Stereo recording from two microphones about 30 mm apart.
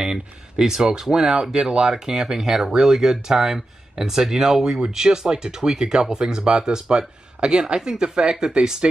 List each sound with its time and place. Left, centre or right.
0.0 s speech: right
1.5 s speech: right